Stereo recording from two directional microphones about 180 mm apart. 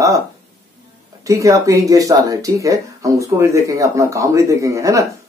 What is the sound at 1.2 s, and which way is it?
Speech, 15° right (ahead or behind).